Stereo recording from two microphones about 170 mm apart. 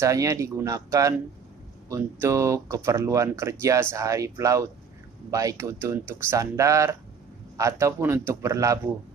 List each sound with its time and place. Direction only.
0.0 s speech: 20° right (ahead or behind)